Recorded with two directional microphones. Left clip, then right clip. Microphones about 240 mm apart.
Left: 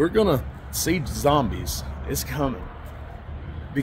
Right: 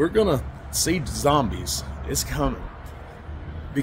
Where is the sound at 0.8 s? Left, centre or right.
Centre.